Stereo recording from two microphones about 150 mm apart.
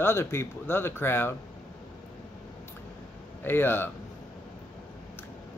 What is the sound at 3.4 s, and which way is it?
Speech, 15° left (ahead or behind).